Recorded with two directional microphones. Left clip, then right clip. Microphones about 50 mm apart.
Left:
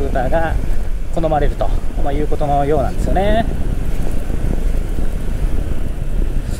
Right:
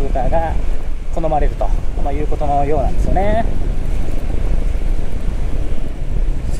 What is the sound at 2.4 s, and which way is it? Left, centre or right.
Speech, left.